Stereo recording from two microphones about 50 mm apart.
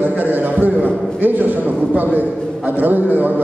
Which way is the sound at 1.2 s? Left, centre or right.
Right.